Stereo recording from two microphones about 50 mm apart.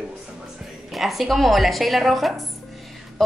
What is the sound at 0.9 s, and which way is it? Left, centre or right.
A woman's voice, centre.